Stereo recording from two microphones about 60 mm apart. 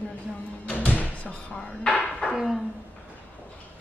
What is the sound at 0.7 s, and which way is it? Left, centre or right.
Music, left.